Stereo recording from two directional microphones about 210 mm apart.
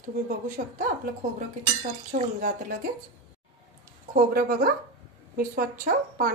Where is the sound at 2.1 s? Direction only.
40° right (ahead or behind).